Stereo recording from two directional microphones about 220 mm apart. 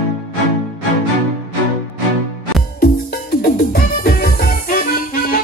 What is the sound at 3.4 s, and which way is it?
Music, 40° left (ahead or behind).